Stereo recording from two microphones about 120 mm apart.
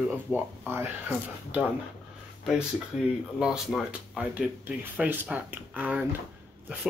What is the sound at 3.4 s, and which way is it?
Speech, 5° right (ahead or behind).